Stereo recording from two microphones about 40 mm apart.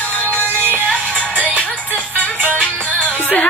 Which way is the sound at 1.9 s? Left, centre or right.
Left.